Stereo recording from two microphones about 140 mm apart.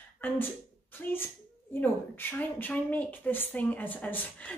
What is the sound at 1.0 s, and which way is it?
A woman's voice, 10° left (ahead or behind).